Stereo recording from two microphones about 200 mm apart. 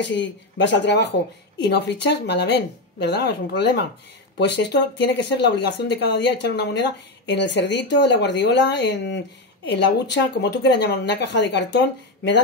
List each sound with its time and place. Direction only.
0.0 s speech: 60° left (ahead or behind)